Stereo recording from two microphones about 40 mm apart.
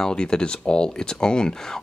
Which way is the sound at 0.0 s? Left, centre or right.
Centre.